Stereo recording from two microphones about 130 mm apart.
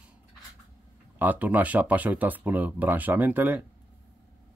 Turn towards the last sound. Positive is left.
turn(degrees=-15)  # may be behind; listen again after turning